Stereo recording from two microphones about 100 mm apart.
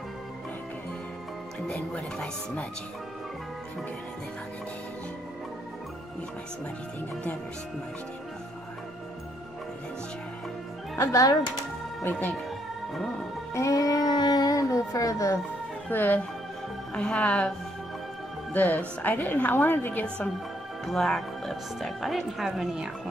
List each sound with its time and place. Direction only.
1.7 s a woman's voice: 5° left (ahead or behind)
11.0 s speech: 30° left (ahead or behind)
12.0 s a woman's voice: 15° left (ahead or behind)
13.6 s a sound: 35° left (ahead or behind)
15.9 s a woman's voice: 20° left (ahead or behind)
20.8 s a woman's voice: 5° left (ahead or behind)